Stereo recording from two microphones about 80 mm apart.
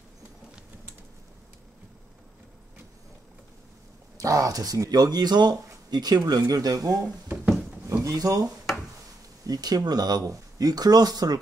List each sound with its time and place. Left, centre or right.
4.2 s speech: right
9.5 s speech: right